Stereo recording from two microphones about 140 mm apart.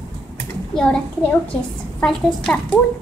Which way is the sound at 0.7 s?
5° left (ahead or behind).